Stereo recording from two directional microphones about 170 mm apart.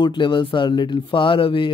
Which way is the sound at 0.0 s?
25° left (ahead or behind).